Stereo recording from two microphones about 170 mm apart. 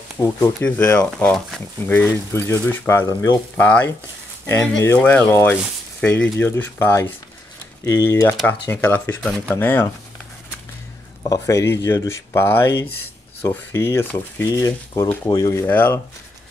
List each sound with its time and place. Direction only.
0.2 s speech: 15° left (ahead or behind)
11.2 s speech: 20° left (ahead or behind)